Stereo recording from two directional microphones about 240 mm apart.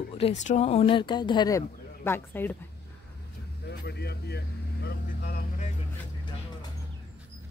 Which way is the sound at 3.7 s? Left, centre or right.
Left.